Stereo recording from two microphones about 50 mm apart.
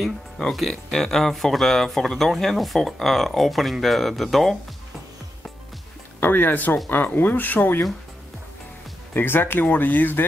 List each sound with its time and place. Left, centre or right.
0.5 s speech: centre
6.2 s speech: left
9.1 s speech: left